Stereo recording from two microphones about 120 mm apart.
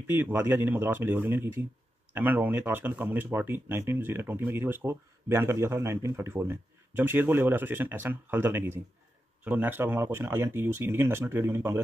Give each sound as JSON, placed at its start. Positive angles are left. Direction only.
{"t": 0.0, "sound": "speech", "side_deg": -15}